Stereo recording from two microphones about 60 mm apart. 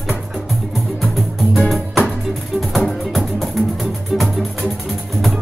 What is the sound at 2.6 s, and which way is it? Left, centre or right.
Music, centre.